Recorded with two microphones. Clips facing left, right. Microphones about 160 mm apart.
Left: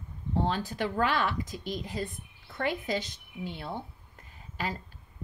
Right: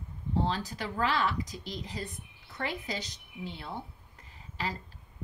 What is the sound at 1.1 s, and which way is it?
A woman's voice, 50° left (ahead or behind).